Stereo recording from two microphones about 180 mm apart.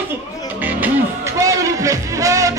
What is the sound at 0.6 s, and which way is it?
Music, 10° right (ahead or behind).